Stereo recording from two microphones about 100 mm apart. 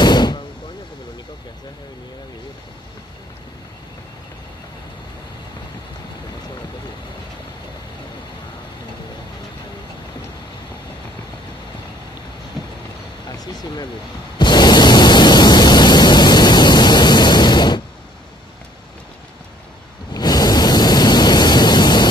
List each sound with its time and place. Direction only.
0.0 s vehicle: 45° left (ahead or behind)
13.4 s a sound: 40° left (ahead or behind)
14.4 s pink noise: 45° left (ahead or behind)
20.1 s pink noise: 40° left (ahead or behind)